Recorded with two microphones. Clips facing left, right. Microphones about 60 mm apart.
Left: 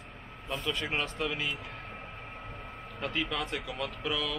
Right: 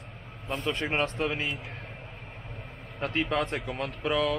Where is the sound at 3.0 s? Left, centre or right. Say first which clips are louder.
Right 5 dB; right.